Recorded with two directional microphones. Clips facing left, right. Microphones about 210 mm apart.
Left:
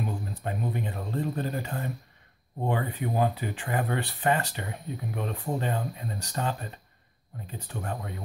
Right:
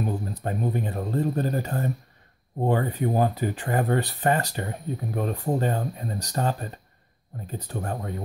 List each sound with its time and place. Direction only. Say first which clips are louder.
0.0 s speech: right 4 dB; 40° right (ahead or behind)